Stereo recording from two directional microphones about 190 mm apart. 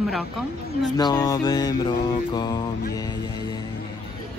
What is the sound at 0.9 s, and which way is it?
Mantra, 20° left (ahead or behind).